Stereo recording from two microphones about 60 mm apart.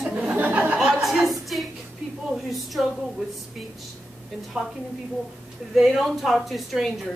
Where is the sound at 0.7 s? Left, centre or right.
Centre.